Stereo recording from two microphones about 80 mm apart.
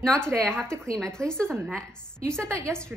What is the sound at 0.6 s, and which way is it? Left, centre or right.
Speech, right.